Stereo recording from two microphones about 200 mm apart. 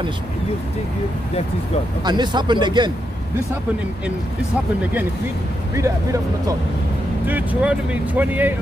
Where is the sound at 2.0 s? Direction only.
20° right (ahead or behind).